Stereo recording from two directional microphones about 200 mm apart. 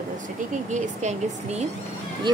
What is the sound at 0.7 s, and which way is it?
Speech, 35° right (ahead or behind).